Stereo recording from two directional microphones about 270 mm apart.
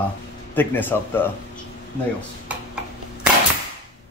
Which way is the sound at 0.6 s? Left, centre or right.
Centre.